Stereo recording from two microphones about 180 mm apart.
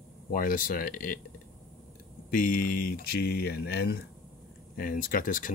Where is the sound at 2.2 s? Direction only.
50° left (ahead or behind).